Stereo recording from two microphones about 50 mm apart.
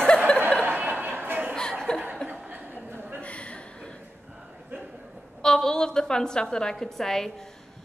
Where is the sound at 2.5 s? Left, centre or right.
Right.